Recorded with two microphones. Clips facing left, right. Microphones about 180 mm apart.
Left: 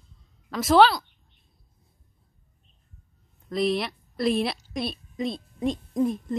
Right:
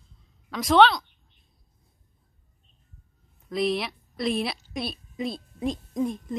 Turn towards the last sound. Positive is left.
turn(degrees=0)  # may be behind; listen again after turning